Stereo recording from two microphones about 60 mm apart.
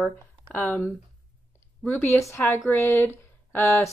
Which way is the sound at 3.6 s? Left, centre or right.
Left.